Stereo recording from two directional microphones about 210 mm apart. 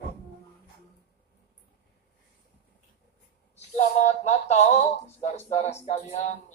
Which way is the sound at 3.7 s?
30° left (ahead or behind).